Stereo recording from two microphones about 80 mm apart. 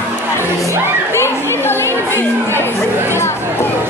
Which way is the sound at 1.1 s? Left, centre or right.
Left.